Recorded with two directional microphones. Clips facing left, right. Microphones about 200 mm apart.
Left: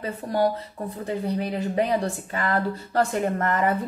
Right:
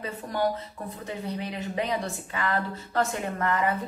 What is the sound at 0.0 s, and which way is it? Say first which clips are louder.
Speech: left 4 dB; 35° left (ahead or behind).